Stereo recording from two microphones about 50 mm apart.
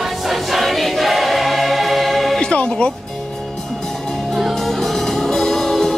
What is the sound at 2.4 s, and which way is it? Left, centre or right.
Music, left.